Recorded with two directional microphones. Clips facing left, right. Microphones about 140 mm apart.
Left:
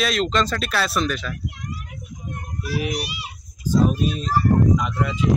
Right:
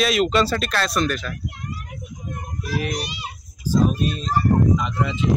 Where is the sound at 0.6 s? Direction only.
5° left (ahead or behind).